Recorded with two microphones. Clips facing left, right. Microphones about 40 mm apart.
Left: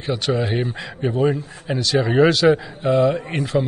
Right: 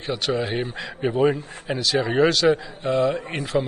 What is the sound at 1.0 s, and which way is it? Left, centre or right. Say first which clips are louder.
A man's voice: left 1 dB; centre.